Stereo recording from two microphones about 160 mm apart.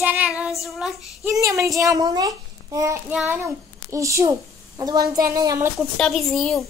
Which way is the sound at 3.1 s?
10° right (ahead or behind).